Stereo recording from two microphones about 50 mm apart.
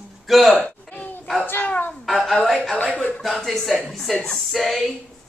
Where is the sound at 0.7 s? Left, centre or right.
Left.